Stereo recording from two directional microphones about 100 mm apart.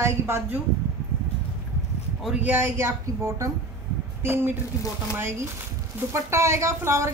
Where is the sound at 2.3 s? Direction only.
20° right (ahead or behind).